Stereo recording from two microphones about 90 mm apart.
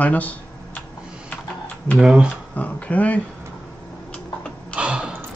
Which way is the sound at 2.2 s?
15° left (ahead or behind).